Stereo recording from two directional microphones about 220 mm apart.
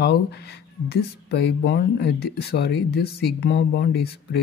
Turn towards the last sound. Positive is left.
turn(degrees=45)  # may be behind; listen again after turning